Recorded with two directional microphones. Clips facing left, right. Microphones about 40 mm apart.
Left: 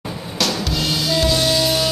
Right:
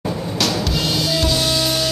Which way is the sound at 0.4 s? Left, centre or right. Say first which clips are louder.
Even; centre.